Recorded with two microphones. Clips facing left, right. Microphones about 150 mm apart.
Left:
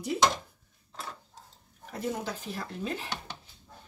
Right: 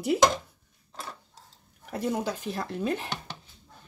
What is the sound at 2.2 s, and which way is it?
Speech, 65° right (ahead or behind).